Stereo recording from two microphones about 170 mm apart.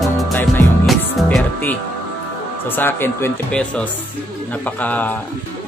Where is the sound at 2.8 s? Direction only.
15° left (ahead or behind).